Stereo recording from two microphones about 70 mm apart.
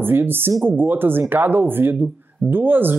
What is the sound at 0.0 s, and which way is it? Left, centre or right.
Speech, right.